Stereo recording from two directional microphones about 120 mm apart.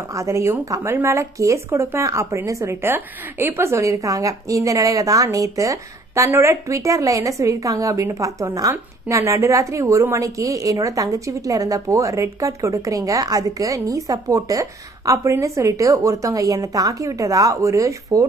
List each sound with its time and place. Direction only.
0.1 s a woman's voice: 25° right (ahead or behind)